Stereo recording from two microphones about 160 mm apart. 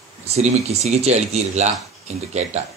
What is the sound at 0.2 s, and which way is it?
A man's voice, 40° right (ahead or behind).